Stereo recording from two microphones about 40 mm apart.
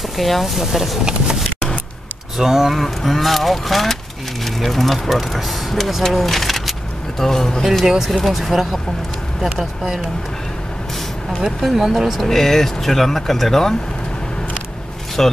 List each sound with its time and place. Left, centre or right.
0.2 s speech: centre
1.0 s speech: centre
2.3 s speech: centre
7.8 s speech: centre
11.4 s speech: centre
12.3 s speech: centre
15.2 s speech: centre